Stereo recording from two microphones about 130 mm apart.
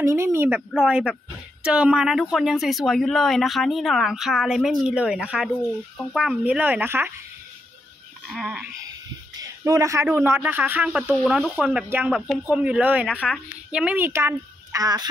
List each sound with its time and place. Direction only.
0.0 s a woman's voice: 20° right (ahead or behind)
0.7 s speech: 5° right (ahead or behind)
8.3 s speech: 5° right (ahead or behind)
9.4 s a sound: 25° right (ahead or behind)
10.1 s speech: 20° right (ahead or behind)
13.1 s speech: 10° left (ahead or behind)
13.7 s a woman's voice: 10° right (ahead or behind); by 15.0 s 30° right (ahead or behind)